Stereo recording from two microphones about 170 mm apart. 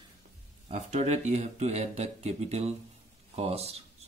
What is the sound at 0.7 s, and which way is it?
Speech, 40° right (ahead or behind).